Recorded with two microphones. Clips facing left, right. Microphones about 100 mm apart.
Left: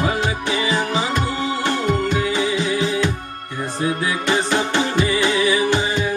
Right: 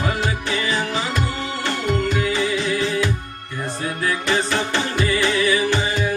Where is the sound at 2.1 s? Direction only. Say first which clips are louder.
Left 1 dB; 20° left (ahead or behind).